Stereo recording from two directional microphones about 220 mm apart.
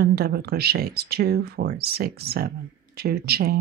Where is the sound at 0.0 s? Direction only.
45° right (ahead or behind).